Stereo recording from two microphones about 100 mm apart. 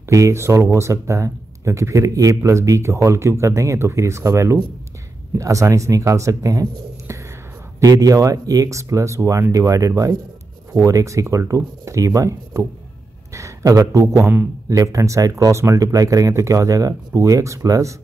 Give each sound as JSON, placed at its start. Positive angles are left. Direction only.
{"t": 0.1, "sound": "a man's voice", "side_deg": -30}
{"t": 14.2, "sound": "speech", "side_deg": -20}
{"t": 14.7, "sound": "speech", "side_deg": -30}